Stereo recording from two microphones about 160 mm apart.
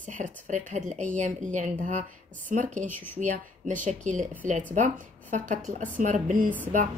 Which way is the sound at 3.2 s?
50° right (ahead or behind).